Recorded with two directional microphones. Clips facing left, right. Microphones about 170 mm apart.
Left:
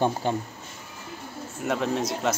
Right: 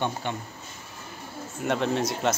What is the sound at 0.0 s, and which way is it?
Speech, 40° left (ahead or behind).